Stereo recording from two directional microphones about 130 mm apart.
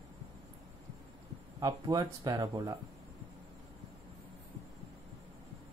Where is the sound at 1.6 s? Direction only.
30° right (ahead or behind).